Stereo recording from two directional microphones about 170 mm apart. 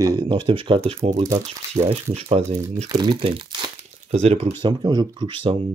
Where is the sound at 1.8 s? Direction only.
30° right (ahead or behind).